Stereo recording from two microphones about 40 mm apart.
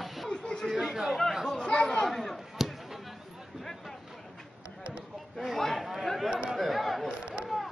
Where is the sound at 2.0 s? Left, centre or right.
Centre.